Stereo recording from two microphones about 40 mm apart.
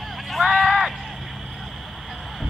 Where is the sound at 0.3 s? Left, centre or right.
Centre.